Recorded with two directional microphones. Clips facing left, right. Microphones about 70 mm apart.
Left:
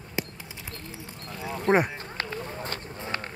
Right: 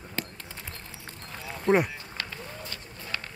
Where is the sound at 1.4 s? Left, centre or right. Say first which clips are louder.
Left 1 dB; left.